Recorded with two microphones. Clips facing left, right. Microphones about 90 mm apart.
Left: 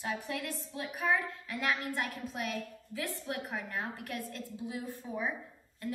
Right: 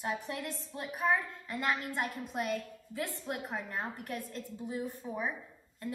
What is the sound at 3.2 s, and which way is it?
A woman's voice, 30° right (ahead or behind).